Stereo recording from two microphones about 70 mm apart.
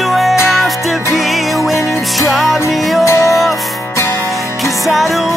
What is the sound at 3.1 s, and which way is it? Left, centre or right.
Music, left.